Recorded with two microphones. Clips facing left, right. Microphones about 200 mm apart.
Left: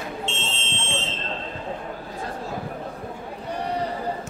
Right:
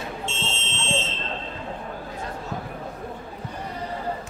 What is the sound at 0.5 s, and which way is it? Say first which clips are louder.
Fire alarm: even; 15° left (ahead or behind).